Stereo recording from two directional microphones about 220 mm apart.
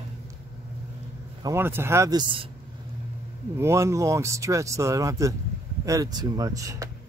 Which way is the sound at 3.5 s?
10° right (ahead or behind).